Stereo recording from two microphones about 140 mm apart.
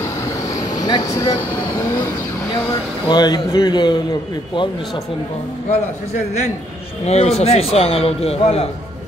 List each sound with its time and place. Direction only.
0.7 s speech: 30° left (ahead or behind)
1.9 s vehicle: 25° left (ahead or behind)
2.7 s a man's voice: 30° left (ahead or behind)
5.7 s a man's voice: 55° left (ahead or behind)